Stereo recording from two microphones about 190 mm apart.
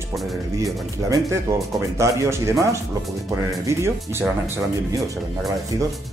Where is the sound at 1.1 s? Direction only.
15° right (ahead or behind).